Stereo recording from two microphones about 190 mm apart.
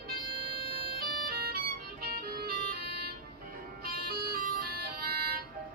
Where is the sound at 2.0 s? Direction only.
55° right (ahead or behind).